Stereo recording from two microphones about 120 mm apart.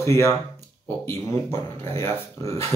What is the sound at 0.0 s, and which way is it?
Speech, 25° left (ahead or behind).